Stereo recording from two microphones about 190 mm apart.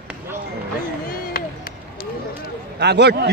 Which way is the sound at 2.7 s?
60° right (ahead or behind).